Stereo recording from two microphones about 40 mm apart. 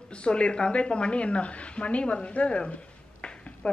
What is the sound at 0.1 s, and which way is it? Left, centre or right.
A woman's voice, left.